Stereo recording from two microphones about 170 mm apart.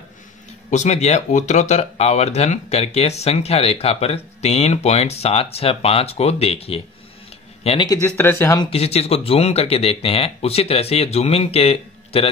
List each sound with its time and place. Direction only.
0.7 s speech: 45° left (ahead or behind)
8.2 s speech: 15° left (ahead or behind)
8.5 s speech: 35° left (ahead or behind)